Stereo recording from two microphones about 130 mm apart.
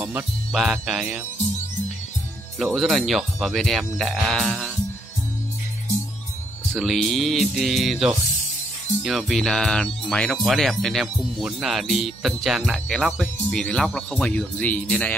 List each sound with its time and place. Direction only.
0.5 s speech: centre (ahead or behind)
2.6 s speech: centre (ahead or behind)
6.7 s speech: centre (ahead or behind)